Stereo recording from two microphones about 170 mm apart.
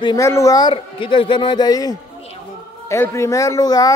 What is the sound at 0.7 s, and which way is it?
A man's voice, 30° left (ahead or behind).